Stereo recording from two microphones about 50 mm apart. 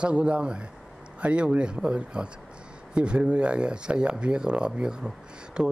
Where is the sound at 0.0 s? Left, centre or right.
Right.